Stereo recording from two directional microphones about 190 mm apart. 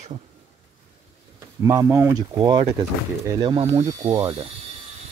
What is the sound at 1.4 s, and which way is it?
Speech, 15° right (ahead or behind).